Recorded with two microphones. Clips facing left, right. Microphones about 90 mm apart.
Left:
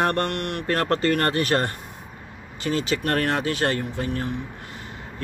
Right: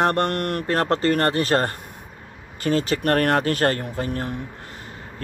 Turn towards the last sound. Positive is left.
turn(degrees=-40)  # may be behind; listen again after turning